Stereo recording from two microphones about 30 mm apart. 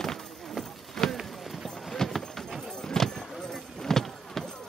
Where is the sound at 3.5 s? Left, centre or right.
Centre.